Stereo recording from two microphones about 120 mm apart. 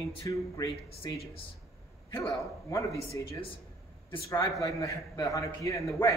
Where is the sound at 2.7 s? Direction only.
25° left (ahead or behind).